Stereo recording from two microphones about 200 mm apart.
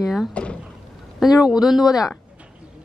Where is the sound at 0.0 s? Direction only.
Centre (ahead or behind).